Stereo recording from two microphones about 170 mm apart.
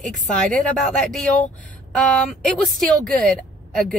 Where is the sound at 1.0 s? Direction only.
5° left (ahead or behind).